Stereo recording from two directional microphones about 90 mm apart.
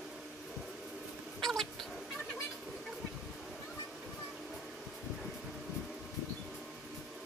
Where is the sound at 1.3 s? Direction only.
5° left (ahead or behind).